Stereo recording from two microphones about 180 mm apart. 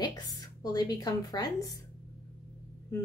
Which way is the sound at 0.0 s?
20° left (ahead or behind).